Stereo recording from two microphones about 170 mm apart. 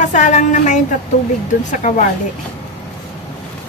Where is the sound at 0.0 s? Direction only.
45° left (ahead or behind).